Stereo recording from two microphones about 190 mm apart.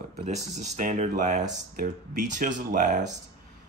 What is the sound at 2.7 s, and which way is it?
Speech, 40° right (ahead or behind).